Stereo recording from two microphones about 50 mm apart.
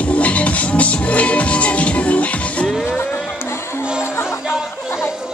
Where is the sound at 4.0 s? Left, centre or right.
Left.